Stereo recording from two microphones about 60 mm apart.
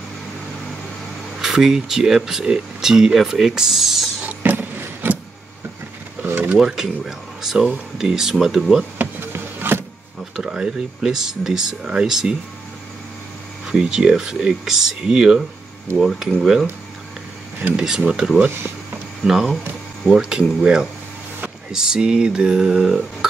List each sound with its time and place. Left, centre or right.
1.4 s speech: centre
4.2 s vehicle: right
6.2 s a sound: right
6.5 s speech: centre
8.9 s a sound: right
10.3 s speech: centre
13.7 s speech: centre
16.0 s speech: centre
17.7 s speech: centre